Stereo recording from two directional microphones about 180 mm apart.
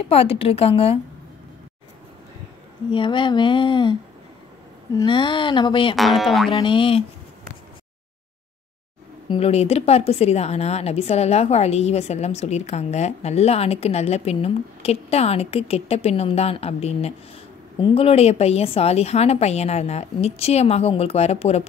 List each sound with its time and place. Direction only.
0.1 s a woman's voice: 35° left (ahead or behind)
2.9 s speech: 25° left (ahead or behind)
4.9 s speech: 25° left (ahead or behind)
5.9 s speech: centre (ahead or behind)
6.6 s speech: 30° left (ahead or behind)
9.3 s a woman's voice: 35° left (ahead or behind)